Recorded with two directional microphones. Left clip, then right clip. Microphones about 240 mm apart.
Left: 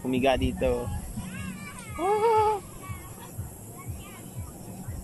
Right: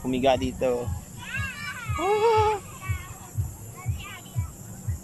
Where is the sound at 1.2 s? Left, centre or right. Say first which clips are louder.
Right 12 dB; right.